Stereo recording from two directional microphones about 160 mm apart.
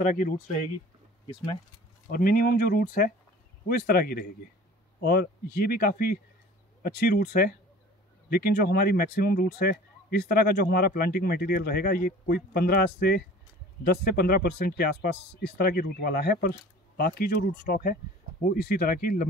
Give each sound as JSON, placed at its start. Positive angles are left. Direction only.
{"t": 0.0, "sound": "speech", "side_deg": 55}
{"t": 1.2, "sound": "speech", "side_deg": 35}
{"t": 2.0, "sound": "speech", "side_deg": 65}